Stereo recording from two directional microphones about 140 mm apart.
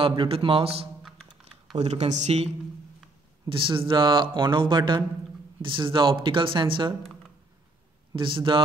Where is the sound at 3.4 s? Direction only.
35° right (ahead or behind).